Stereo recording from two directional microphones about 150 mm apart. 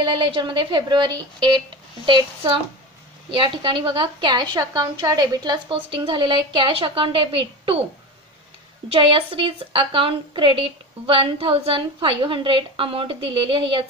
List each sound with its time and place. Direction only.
0.0 s a woman's voice: 35° right (ahead or behind)
8.8 s a woman's voice: 35° right (ahead or behind)